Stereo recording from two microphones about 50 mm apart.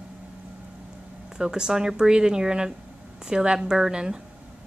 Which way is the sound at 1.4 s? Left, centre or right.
Centre.